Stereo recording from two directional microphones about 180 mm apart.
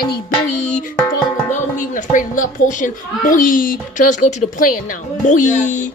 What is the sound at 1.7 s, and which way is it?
A child's voice, 45° left (ahead or behind).